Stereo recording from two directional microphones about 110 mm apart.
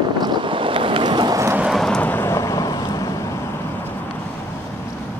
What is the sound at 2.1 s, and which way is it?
Vehicle, 20° left (ahead or behind).